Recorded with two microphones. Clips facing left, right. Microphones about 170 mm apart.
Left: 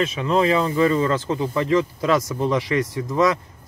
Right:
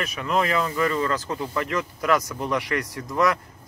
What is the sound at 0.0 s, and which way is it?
Speech, 25° left (ahead or behind).